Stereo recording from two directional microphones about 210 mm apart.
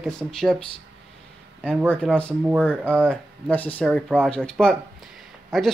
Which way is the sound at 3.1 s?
5° left (ahead or behind).